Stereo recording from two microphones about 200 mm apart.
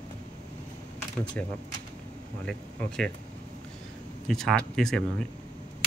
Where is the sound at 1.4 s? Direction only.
10° left (ahead or behind).